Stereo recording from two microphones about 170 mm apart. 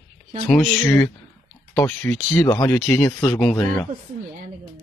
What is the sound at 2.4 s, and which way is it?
Speech, 25° left (ahead or behind).